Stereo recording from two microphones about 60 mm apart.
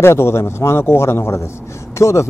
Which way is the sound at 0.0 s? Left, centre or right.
Left.